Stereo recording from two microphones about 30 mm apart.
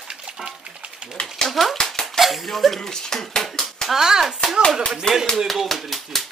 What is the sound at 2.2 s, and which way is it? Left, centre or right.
Speech, centre.